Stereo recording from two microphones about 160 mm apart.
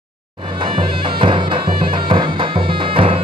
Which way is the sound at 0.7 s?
30° right (ahead or behind).